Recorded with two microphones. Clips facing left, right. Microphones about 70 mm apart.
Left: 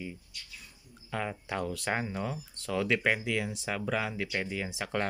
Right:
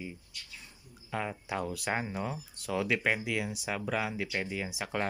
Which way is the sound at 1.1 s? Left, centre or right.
Centre.